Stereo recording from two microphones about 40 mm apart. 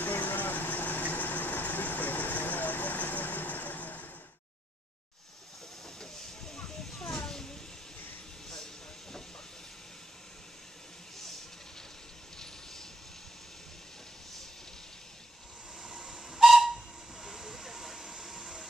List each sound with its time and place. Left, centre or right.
0.0 s vehicle: left
5.9 s hiss: centre
7.2 s a sound: centre
15.8 s steam whistle: centre
16.7 s steam: centre